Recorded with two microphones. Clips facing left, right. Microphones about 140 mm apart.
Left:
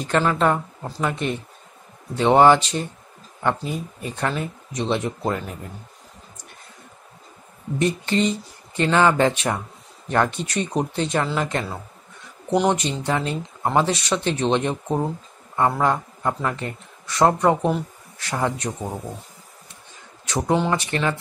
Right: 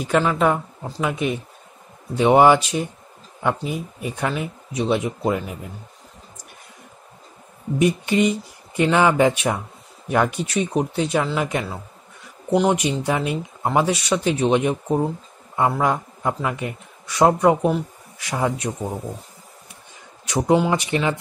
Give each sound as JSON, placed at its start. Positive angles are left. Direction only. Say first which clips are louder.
{"t": 0.0, "sound": "speech", "louder": "right 1 dB", "side_deg": -5}
{"t": 7.8, "sound": "speech", "louder": "right 3 dB", "side_deg": -10}
{"t": 20.2, "sound": "speech", "louder": "right 3 dB", "side_deg": -15}